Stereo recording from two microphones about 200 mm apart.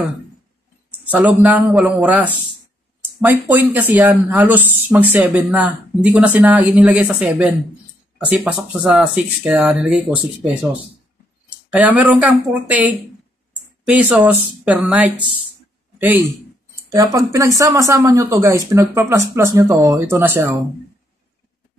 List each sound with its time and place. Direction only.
1.1 s speech: 10° right (ahead or behind)
11.7 s speech: 5° right (ahead or behind)